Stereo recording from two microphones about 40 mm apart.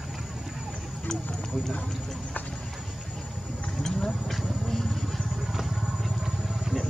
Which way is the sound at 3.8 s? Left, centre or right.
Centre.